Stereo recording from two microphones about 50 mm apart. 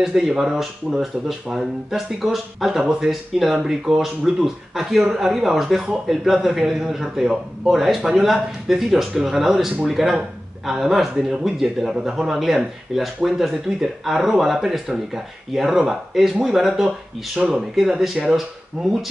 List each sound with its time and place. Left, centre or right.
0.0 s a man's voice: centre
17.4 s a man's voice: centre